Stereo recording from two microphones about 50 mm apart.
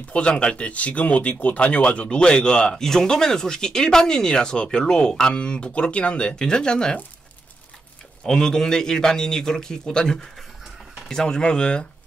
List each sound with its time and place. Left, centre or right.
0.1 s speech: centre
8.3 s speech: centre